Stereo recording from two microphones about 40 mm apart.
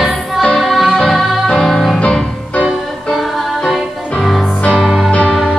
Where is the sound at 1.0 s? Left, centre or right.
Centre.